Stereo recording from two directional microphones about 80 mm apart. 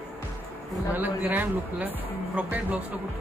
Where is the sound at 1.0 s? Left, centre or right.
Right.